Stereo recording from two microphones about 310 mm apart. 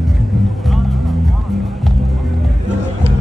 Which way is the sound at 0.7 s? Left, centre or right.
Centre.